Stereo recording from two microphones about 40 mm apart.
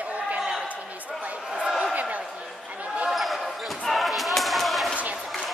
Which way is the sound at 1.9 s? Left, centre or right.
Right.